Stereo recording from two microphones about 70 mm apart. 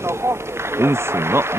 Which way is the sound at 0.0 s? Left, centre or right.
Right.